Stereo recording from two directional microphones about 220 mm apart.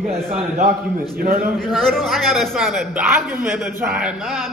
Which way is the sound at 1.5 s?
Centre (ahead or behind).